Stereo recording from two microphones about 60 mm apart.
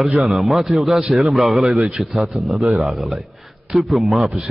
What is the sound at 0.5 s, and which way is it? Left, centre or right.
Mantra, centre.